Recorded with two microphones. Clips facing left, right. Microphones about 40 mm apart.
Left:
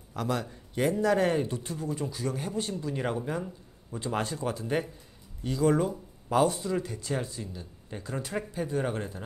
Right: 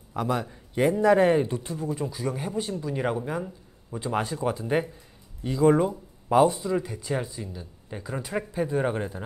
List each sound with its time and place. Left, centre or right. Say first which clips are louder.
0.1 s speech: right 4 dB; centre
4.4 s speech: right 4 dB; centre